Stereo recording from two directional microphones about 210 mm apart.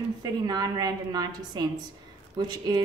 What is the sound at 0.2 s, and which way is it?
Speech, 20° right (ahead or behind).